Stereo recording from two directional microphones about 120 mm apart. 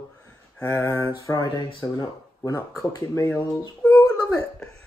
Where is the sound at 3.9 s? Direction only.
30° left (ahead or behind).